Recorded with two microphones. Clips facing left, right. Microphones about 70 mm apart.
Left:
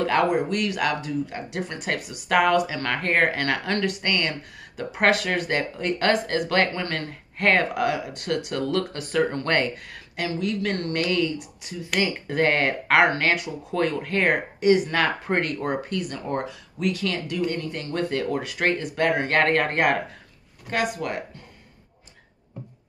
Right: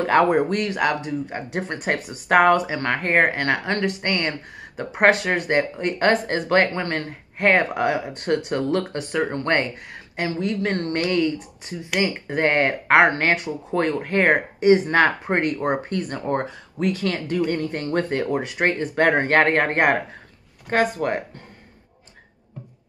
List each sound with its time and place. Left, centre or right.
0.0 s speech: right
18.1 s speech: right
19.0 s speech: right
19.3 s speech: right